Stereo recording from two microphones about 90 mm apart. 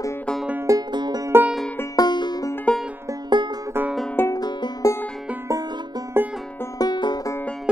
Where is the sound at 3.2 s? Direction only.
55° right (ahead or behind).